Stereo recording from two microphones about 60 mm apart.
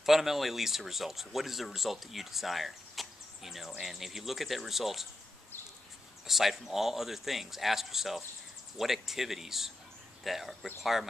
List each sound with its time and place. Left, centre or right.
0.0 s speech: centre
6.2 s speech: centre